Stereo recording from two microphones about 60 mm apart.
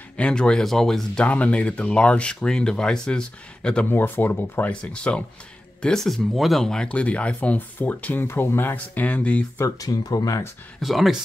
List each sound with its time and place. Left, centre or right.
0.2 s speech: centre
1.2 s speech: left
3.9 s speech: left
4.6 s speech: centre
6.0 s speech: centre
6.9 s speech: left
8.3 s speech: left
8.7 s speech: left
9.8 s speech: left
10.8 s speech: centre